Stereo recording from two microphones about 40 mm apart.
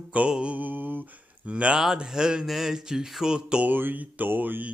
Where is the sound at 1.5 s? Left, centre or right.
Right.